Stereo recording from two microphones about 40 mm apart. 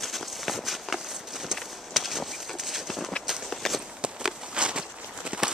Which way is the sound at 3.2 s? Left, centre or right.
Centre.